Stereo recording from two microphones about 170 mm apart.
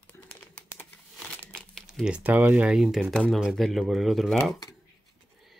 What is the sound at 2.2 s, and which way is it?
Speech, 10° right (ahead or behind).